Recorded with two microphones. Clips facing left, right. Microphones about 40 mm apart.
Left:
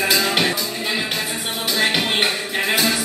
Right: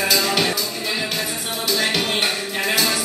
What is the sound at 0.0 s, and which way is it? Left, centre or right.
Music, left.